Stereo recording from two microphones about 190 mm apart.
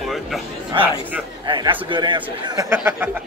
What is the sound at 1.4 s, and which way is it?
A man's voice, 25° right (ahead or behind).